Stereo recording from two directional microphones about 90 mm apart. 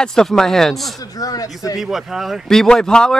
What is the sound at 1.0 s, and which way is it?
Speech, 40° left (ahead or behind).